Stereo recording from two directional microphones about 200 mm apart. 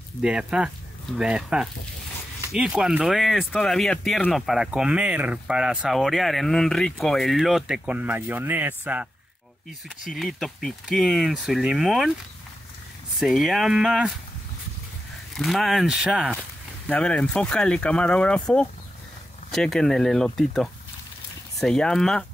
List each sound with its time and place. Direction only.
0.2 s speech: 5° right (ahead or behind)
13.2 s speech: centre (ahead or behind)
15.3 s speech: centre (ahead or behind)